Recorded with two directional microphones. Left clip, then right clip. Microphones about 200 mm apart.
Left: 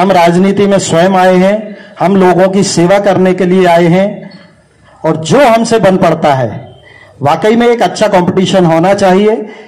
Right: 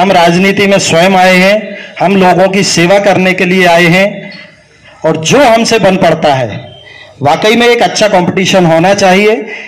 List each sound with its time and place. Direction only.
0.0 s a man's voice: 40° right (ahead or behind)